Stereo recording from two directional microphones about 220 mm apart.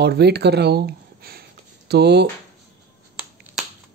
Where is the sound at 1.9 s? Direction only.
50° right (ahead or behind).